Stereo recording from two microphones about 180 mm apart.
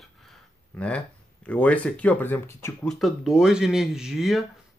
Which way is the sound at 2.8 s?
Centre (ahead or behind).